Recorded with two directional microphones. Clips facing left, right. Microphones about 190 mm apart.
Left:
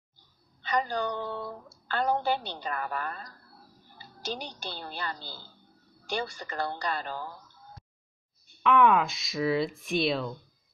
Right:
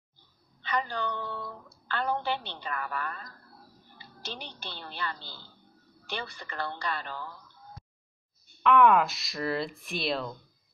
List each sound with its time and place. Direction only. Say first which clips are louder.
0.6 s a woman's voice: left 3 dB; 40° left (ahead or behind)
8.6 s speech: right 1 dB; centre (ahead or behind)